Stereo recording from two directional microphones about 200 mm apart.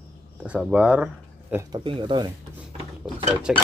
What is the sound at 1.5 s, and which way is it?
Speech, 20° right (ahead or behind).